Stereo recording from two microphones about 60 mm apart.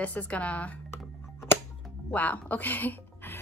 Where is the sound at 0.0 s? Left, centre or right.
Left.